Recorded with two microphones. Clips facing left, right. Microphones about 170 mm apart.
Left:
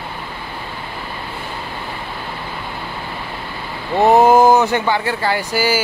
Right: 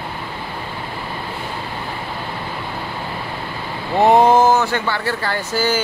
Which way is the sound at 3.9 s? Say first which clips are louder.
Left 1 dB; 5° left (ahead or behind).